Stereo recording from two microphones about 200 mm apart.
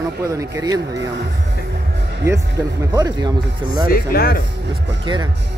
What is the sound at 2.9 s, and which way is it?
Speech, 20° right (ahead or behind).